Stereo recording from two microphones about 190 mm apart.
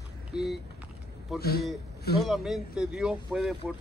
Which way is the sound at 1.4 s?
55° left (ahead or behind).